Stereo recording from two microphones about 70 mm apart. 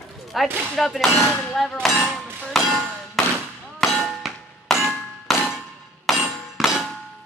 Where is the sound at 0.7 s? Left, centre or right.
Centre.